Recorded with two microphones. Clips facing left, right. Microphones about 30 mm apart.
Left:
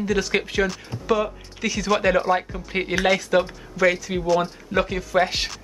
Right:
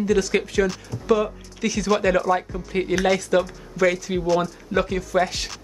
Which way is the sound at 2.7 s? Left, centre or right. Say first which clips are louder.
Even; left.